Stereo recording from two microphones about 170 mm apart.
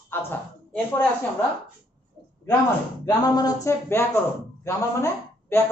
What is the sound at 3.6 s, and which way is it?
A man's voice, 15° left (ahead or behind).